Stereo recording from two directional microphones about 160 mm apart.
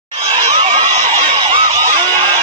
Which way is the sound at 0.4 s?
35° right (ahead or behind).